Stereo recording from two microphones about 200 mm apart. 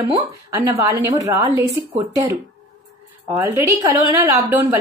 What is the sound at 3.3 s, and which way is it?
Speech, 15° right (ahead or behind).